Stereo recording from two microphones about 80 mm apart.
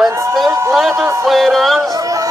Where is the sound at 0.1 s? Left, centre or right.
Right.